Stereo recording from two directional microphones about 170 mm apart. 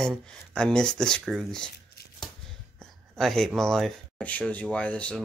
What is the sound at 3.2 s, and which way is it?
Speech, centre (ahead or behind).